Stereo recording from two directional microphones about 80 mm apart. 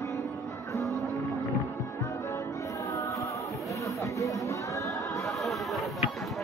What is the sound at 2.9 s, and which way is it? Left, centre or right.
Music, left.